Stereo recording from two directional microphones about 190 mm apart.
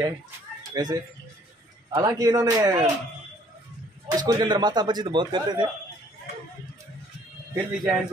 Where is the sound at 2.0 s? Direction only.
20° right (ahead or behind).